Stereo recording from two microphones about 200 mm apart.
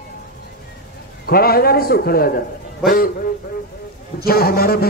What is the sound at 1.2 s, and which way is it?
A man's voice, 50° left (ahead or behind).